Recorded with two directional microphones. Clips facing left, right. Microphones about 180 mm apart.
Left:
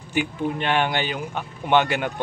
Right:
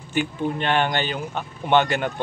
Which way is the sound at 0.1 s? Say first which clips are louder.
Even; 10° left (ahead or behind).